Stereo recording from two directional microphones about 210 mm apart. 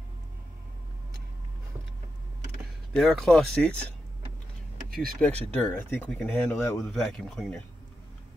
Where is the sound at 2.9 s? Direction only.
Centre (ahead or behind).